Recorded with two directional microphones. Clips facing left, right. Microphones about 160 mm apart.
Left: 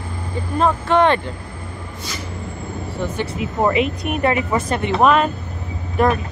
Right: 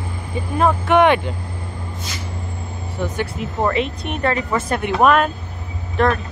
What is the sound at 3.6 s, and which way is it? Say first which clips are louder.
Speech: left 3 dB; 5° left (ahead or behind).